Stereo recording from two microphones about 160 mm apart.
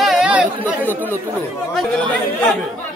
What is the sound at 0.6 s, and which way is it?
Speech, 10° left (ahead or behind).